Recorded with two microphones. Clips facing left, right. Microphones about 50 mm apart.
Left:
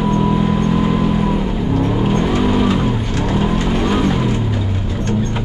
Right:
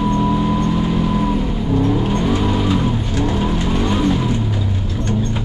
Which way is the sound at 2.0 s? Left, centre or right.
Left.